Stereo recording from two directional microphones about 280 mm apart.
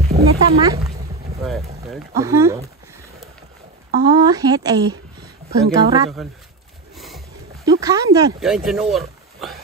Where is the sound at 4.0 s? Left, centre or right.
Centre.